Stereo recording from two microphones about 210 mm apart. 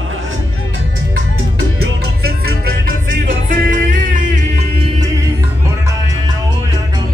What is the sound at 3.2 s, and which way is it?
Music, 40° right (ahead or behind).